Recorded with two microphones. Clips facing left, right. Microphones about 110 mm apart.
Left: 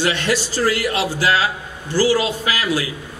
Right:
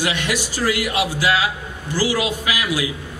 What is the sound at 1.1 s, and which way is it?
Speech, 35° left (ahead or behind).